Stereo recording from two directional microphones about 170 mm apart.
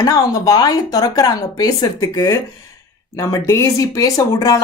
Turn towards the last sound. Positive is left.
turn(degrees=20)  # may be behind; listen again after turning